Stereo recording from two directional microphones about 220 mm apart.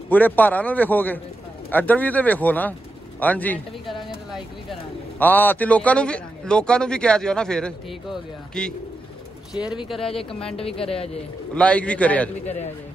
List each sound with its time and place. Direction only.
0.1 s a man's voice: 10° left (ahead or behind)
5.2 s a man's voice: 10° left (ahead or behind)
9.8 s a man's voice: centre (ahead or behind)
10.5 s a woman's voice: 25° left (ahead or behind)
11.5 s a man's voice: 5° left (ahead or behind)
12.4 s a man's voice: 30° left (ahead or behind)